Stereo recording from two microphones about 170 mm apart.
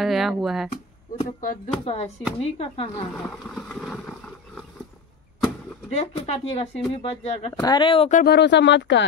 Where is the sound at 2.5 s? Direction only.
35° left (ahead or behind).